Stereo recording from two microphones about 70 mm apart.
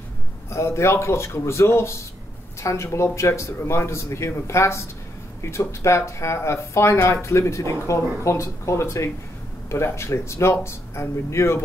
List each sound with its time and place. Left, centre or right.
0.5 s speech: left